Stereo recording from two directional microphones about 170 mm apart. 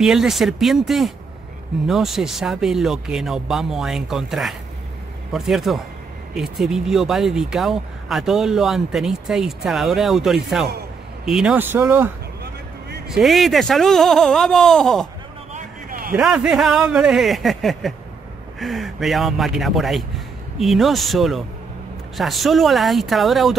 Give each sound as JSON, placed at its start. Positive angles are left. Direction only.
{"t": 0.0, "sound": "speech", "side_deg": 0}
{"t": 13.1, "sound": "speech", "side_deg": 0}
{"t": 15.5, "sound": "a sound", "side_deg": -55}
{"t": 16.2, "sound": "speech", "side_deg": -5}